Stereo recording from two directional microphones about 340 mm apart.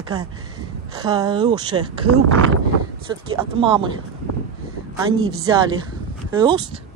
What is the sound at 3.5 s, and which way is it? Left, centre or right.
Speech, centre.